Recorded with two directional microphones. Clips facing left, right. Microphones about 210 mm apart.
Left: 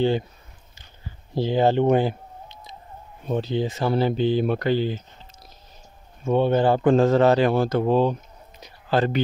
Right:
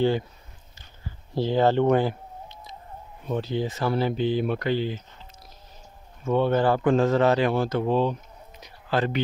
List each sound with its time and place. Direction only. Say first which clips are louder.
1.3 s speech: left 1 dB; 15° left (ahead or behind)
3.3 s speech: left 3 dB; 25° left (ahead or behind)
6.2 s speech: left 2 dB; 20° left (ahead or behind)